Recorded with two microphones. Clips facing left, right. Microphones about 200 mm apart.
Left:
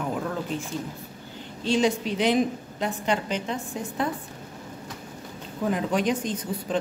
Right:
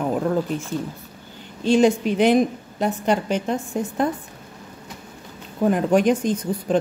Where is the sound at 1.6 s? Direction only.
50° right (ahead or behind).